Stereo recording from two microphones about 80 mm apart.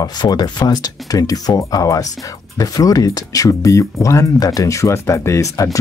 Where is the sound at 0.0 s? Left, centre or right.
Left.